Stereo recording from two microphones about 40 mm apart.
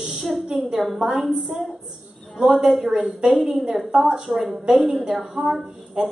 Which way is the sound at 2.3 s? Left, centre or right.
Centre.